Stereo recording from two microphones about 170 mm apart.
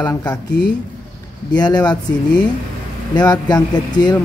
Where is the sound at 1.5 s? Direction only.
25° left (ahead or behind).